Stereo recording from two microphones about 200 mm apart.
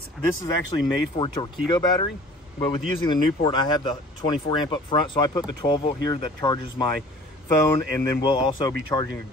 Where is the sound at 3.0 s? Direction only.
25° left (ahead or behind).